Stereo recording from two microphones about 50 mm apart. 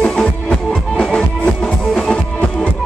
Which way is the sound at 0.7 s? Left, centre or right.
Centre.